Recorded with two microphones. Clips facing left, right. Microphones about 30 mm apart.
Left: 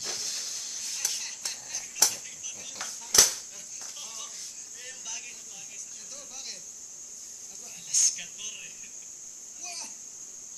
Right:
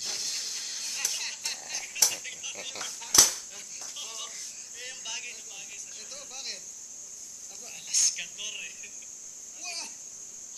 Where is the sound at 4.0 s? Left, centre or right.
Centre.